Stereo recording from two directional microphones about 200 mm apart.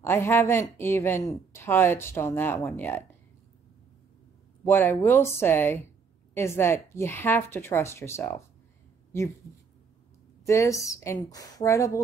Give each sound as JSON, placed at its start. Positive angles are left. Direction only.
{"t": 0.0, "sound": "a woman's voice", "side_deg": 10}
{"t": 4.6, "sound": "a woman's voice", "side_deg": 10}
{"t": 10.4, "sound": "a woman's voice", "side_deg": 15}